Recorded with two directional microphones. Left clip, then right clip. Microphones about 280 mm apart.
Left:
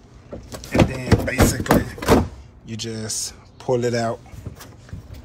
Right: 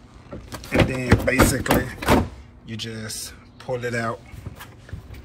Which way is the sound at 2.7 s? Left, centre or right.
Centre.